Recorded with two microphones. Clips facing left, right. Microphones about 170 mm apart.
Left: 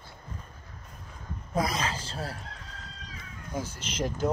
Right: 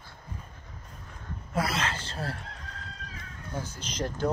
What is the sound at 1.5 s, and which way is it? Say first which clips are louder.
Speech: left 1 dB; 15° left (ahead or behind).